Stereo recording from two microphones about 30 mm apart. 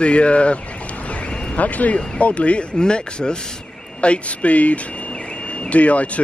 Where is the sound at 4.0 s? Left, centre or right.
Left.